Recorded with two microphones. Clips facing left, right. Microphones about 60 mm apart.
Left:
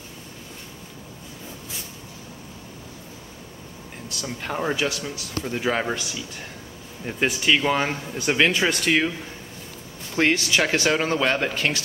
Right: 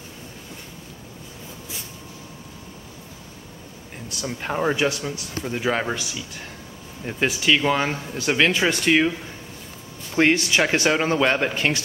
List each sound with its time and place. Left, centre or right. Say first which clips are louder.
4.1 s speech: right 3 dB; right
4.7 s speech: right 3 dB; right
5.4 s speech: even; centre
7.4 s speech: right 1 dB; centre
8.5 s speech: right 2 dB; centre
10.1 s speech: right 2 dB; right
11.5 s speech: right 2 dB; right